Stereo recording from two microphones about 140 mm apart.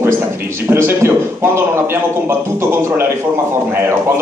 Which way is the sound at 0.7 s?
15° right (ahead or behind).